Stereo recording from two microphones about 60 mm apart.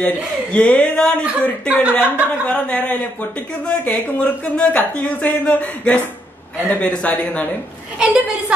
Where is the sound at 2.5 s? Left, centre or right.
Left.